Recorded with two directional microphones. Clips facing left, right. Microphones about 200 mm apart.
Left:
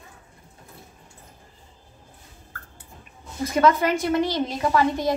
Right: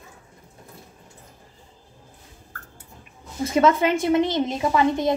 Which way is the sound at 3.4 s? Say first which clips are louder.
Right 1 dB; 25° right (ahead or behind).